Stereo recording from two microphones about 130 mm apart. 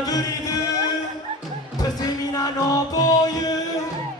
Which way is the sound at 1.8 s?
30° left (ahead or behind).